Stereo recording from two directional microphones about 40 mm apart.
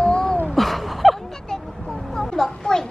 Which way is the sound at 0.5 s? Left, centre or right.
Centre.